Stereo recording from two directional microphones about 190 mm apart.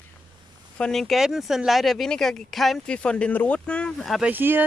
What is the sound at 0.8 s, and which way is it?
Speech, centre (ahead or behind).